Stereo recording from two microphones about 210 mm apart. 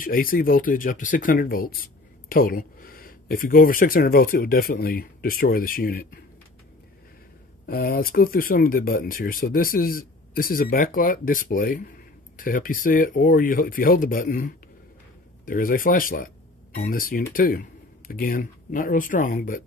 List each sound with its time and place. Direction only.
0.0 s speech: 45° left (ahead or behind)
7.6 s speech: 45° left (ahead or behind)